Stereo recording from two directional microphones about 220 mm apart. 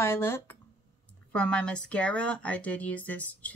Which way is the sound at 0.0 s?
10° left (ahead or behind).